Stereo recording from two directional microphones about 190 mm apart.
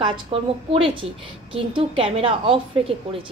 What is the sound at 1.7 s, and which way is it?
A woman's voice, 30° right (ahead or behind).